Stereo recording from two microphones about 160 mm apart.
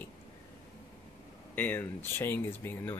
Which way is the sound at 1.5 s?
10° left (ahead or behind).